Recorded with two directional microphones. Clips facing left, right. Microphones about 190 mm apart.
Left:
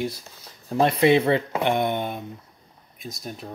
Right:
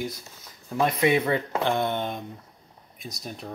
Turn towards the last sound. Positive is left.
turn(degrees=0)  # may be behind; listen again after turning